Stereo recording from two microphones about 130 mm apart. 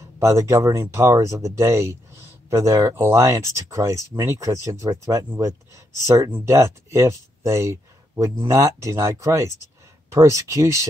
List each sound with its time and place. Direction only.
0.2 s speech: 20° right (ahead or behind)